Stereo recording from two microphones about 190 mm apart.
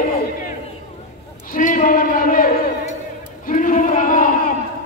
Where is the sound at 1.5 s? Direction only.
45° left (ahead or behind).